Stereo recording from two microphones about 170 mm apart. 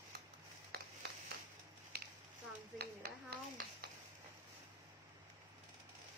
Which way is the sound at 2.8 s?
70° right (ahead or behind).